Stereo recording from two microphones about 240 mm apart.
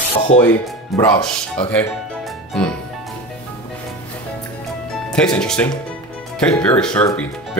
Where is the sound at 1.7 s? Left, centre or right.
Centre.